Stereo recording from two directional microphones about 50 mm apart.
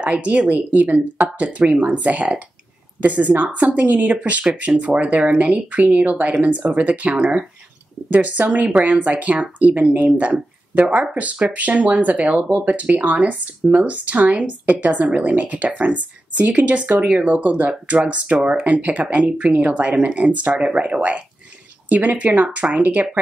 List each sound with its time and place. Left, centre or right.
0.0 s speech: right